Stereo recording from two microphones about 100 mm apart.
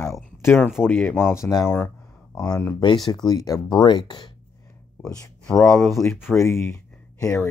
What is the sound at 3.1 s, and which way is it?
Speech, 40° left (ahead or behind).